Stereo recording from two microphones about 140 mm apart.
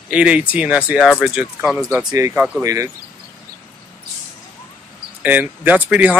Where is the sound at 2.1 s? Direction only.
25° right (ahead or behind).